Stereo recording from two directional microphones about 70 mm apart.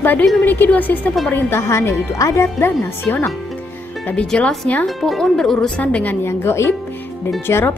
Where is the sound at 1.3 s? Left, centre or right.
Left.